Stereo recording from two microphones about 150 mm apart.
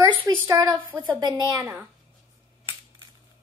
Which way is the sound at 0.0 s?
25° right (ahead or behind).